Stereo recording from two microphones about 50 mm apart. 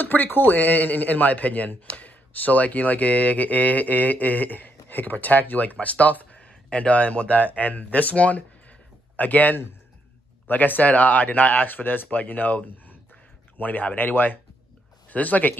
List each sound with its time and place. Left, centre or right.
0.0 s speech: left
12.6 s a sound: left
15.0 s speech: left